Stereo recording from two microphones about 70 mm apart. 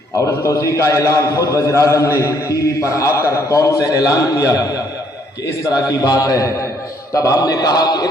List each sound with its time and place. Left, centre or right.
0.2 s a man's voice: left
5.7 s a man's voice: left